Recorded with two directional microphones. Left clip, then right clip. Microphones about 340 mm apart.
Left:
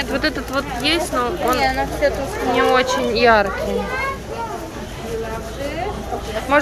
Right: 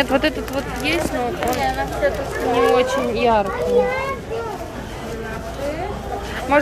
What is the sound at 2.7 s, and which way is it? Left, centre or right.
Speech, centre.